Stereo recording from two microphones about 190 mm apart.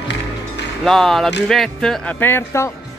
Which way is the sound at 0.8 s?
Centre (ahead or behind).